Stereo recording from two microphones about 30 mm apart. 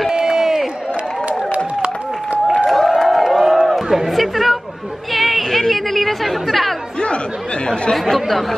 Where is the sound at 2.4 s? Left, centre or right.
Centre.